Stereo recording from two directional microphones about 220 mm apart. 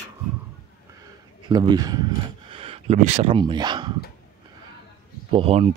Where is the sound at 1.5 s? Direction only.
20° right (ahead or behind).